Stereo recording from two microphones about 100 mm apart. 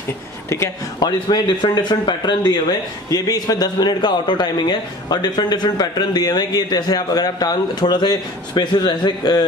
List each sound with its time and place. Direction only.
0.9 s speech: 45° left (ahead or behind)